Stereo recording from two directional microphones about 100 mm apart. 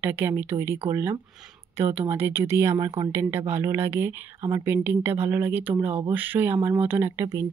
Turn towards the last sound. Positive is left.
turn(degrees=-30)  # may be behind; listen again after turning